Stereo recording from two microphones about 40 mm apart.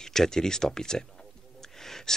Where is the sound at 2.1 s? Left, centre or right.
Centre.